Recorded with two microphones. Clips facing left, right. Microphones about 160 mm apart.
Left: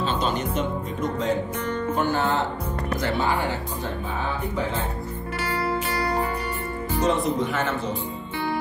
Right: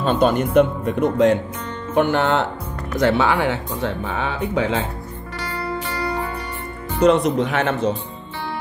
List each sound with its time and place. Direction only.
0.0 s speech: 55° right (ahead or behind)
3.0 s speech: 80° right
5.5 s music: 10° left (ahead or behind)
7.0 s speech: 75° right (ahead or behind)